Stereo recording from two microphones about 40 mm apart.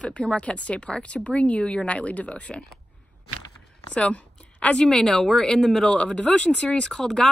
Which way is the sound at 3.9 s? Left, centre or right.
Left.